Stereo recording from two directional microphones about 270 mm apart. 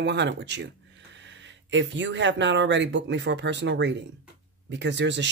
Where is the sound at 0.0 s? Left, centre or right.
Right.